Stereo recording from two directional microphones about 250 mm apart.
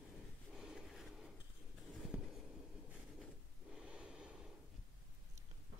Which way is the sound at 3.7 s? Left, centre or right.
Centre.